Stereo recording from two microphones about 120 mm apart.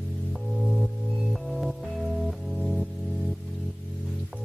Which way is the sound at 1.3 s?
Centre (ahead or behind).